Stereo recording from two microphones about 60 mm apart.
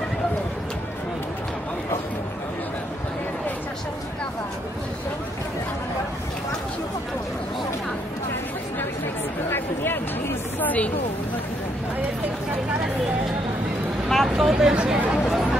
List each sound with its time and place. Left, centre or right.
10.6 s a sound: left
14.0 s vehicle: centre
14.3 s chatter: centre